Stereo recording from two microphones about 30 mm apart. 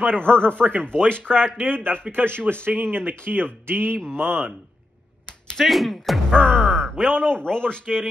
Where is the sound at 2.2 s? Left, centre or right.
Right.